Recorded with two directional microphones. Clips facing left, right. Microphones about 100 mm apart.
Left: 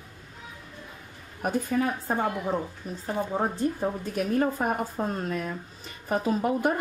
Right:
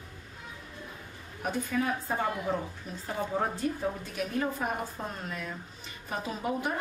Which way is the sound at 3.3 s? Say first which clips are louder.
Left 2 dB; 30° left (ahead or behind).